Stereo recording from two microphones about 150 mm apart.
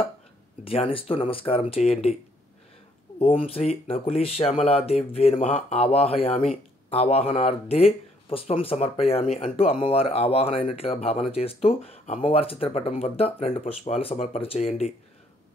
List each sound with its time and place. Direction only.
0.7 s speech: 40° left (ahead or behind)
3.2 s speech: 40° left (ahead or behind)